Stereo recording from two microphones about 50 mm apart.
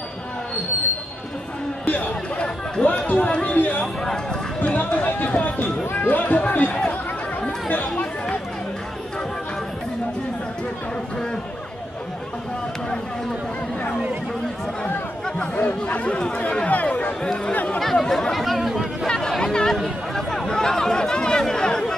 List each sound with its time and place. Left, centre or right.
1.9 s a sound: left
2.4 s speech: left
3.5 s speech: left
3.8 s a man's voice: centre
4.6 s speech: left
15.2 s speech: left
17.2 s a man's voice: centre
19.0 s chatter: centre